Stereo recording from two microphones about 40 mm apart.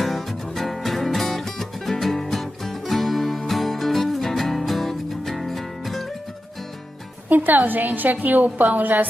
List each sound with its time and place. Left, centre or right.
0.0 s music: centre
7.2 s a woman's voice: right